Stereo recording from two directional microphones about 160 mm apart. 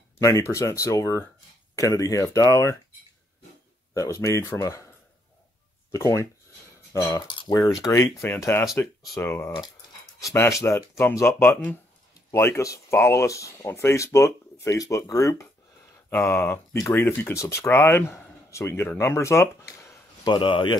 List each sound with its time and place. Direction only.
0.2 s speech: 20° left (ahead or behind)
3.9 s speech: 20° left (ahead or behind)
5.9 s speech: 15° left (ahead or behind)
20.3 s speech: 30° left (ahead or behind)